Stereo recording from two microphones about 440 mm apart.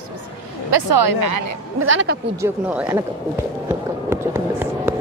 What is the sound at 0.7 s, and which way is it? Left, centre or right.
Speech, right.